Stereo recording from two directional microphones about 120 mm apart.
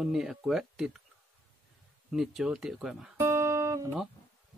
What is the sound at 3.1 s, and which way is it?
Music, 20° right (ahead or behind).